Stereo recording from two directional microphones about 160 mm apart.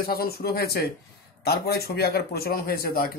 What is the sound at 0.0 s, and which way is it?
Speech, 70° left (ahead or behind).